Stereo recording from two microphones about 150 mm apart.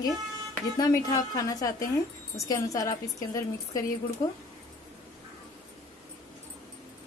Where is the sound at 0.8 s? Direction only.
25° left (ahead or behind).